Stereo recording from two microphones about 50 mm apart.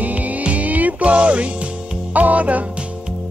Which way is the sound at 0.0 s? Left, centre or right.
Right.